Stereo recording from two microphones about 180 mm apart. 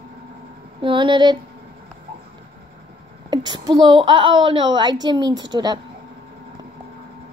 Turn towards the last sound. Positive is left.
turn(degrees=-25)  # may be behind; listen again after turning